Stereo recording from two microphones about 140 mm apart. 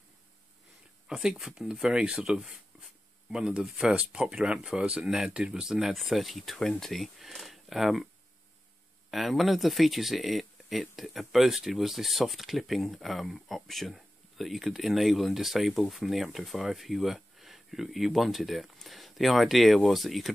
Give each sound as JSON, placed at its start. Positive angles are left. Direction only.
{"t": 1.0, "sound": "speech", "side_deg": 0}
{"t": 9.1, "sound": "speech", "side_deg": 0}